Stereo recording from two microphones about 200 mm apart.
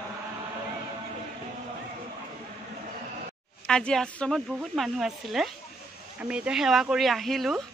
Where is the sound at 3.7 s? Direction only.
5° left (ahead or behind).